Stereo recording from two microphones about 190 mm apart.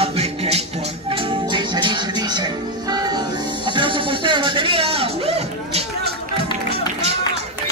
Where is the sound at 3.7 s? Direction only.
25° right (ahead or behind).